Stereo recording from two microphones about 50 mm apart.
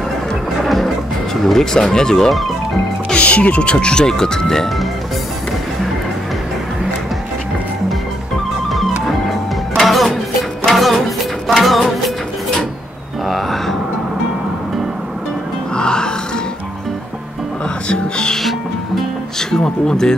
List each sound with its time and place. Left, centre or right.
1.3 s speech: centre
3.2 s speech: left; by 4.8 s centre
9.8 s music: centre
13.3 s a sound: centre
15.7 s music: centre
17.8 s music: centre
19.5 s speech: centre